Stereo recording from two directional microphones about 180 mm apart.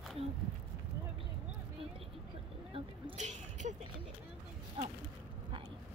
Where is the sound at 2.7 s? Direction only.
35° right (ahead or behind).